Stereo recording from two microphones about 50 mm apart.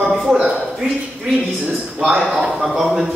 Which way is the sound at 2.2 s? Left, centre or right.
Centre.